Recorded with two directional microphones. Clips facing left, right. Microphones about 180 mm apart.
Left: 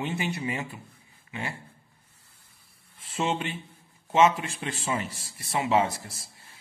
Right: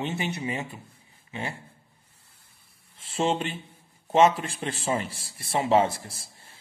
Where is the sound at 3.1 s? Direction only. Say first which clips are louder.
Right 3 dB; 30° right (ahead or behind).